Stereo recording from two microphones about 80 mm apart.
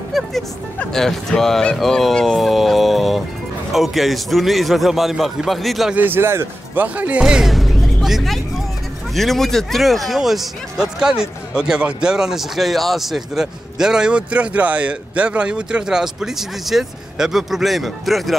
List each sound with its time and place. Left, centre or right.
0.1 s speech: centre
5.9 s speech: right
7.2 s music: centre
9.1 s speech: centre